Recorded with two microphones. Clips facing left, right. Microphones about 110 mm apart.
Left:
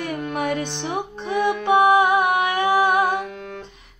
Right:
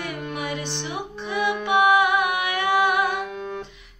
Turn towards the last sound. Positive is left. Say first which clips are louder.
# left 3 dB
turn(degrees=35)  # may be behind; listen again after turning